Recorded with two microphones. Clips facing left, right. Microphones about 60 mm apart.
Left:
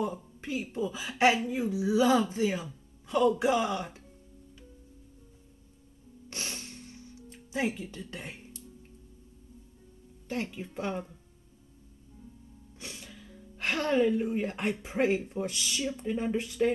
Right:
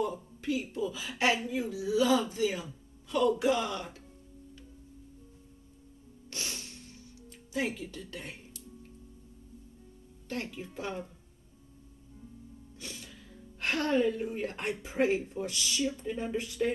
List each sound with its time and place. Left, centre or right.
0.0 s a woman's voice: left
6.3 s music: left
8.0 s a woman's voice: left
10.2 s speech: left
13.6 s a woman's voice: left
15.3 s speech: centre
15.8 s a woman's voice: left